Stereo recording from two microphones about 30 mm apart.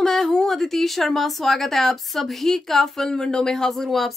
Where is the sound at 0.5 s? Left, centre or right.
Centre.